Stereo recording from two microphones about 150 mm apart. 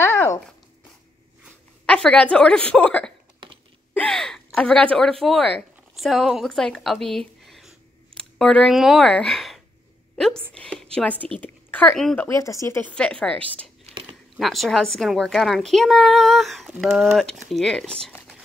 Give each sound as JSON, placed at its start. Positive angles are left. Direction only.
{"t": 0.0, "sound": "a sound", "side_deg": 15}
{"t": 1.9, "sound": "a woman's voice", "side_deg": 5}
{"t": 12.2, "sound": "speech", "side_deg": 20}
{"t": 12.9, "sound": "a woman's voice", "side_deg": 5}
{"t": 13.8, "sound": "a sound", "side_deg": -40}
{"t": 14.3, "sound": "a child's voice", "side_deg": 0}